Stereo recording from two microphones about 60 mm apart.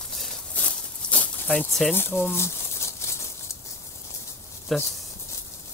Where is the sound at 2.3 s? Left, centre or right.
Left.